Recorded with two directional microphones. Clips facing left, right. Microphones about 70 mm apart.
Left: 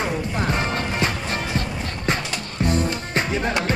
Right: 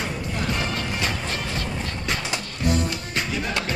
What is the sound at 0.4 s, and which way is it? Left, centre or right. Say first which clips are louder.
Music: left 2 dB; left.